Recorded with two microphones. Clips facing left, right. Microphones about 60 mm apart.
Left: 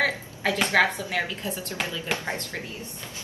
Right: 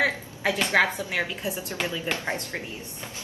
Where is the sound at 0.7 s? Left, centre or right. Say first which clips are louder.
Left 1 dB; centre.